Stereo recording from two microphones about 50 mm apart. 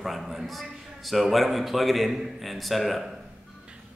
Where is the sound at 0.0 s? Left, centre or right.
Centre.